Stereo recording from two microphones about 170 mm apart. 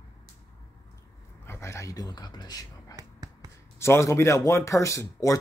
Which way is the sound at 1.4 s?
15° left (ahead or behind).